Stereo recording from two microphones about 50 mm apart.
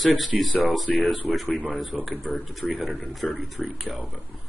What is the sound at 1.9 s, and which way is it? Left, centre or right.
Speech, centre.